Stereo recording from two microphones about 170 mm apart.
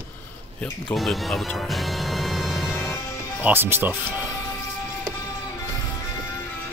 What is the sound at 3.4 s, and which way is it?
Speech, 15° right (ahead or behind).